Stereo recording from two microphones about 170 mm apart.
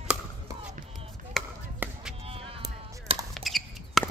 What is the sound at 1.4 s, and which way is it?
Chop, centre (ahead or behind).